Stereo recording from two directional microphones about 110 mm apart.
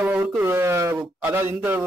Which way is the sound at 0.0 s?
20° right (ahead or behind).